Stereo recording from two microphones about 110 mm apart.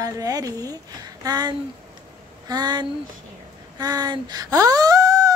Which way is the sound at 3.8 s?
35° right (ahead or behind).